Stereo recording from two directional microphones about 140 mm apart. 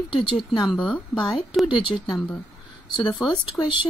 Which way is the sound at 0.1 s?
35° left (ahead or behind).